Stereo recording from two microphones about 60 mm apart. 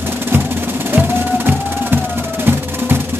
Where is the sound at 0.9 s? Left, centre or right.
Right.